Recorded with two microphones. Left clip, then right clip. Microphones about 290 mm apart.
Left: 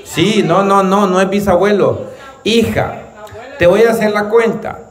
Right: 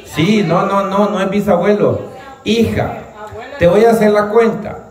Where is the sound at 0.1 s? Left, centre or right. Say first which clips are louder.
Left 2 dB; centre.